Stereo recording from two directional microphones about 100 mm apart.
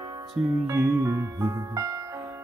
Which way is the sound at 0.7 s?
25° right (ahead or behind).